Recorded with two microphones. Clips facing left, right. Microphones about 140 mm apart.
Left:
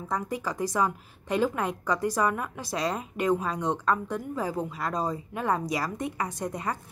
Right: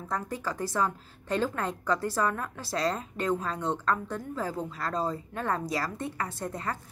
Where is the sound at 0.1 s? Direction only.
15° left (ahead or behind).